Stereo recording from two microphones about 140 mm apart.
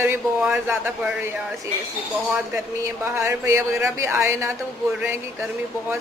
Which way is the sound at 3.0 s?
20° right (ahead or behind).